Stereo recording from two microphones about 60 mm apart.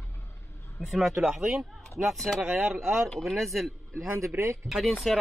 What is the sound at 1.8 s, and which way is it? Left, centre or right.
Speech, centre.